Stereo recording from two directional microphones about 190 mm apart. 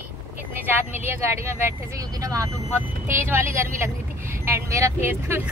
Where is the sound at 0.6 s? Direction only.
10° right (ahead or behind).